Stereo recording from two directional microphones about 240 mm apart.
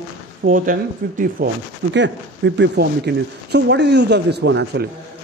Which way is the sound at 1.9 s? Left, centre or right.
Right.